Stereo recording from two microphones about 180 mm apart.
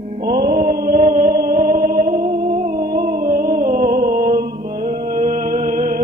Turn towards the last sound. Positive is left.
turn(degrees=-45)  # may be behind; listen again after turning